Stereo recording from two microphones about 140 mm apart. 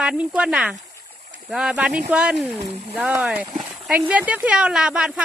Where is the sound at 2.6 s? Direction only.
45° right (ahead or behind).